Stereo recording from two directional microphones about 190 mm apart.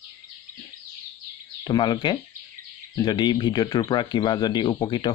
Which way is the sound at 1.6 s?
20° left (ahead or behind).